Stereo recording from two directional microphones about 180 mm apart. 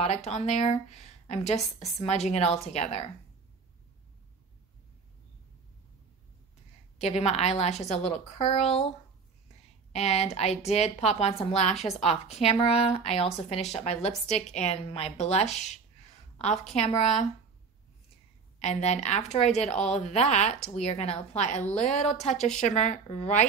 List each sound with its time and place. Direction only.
0.0 s a woman's voice: 40° left (ahead or behind)
7.0 s a woman's voice: 40° left (ahead or behind)
9.9 s a woman's voice: 35° left (ahead or behind)
11.7 s a woman's voice: centre (ahead or behind)
12.0 s a woman's voice: 35° left (ahead or behind)
18.6 s a woman's voice: 40° left (ahead or behind)